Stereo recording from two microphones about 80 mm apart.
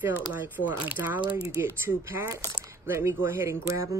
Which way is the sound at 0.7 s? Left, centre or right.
Right.